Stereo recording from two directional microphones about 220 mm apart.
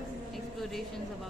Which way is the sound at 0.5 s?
Centre (ahead or behind).